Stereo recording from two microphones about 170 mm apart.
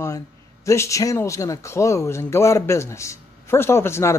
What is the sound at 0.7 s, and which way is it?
A woman's voice, 15° left (ahead or behind).